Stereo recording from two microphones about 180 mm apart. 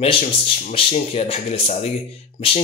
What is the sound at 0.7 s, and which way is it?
Speech, 30° left (ahead or behind).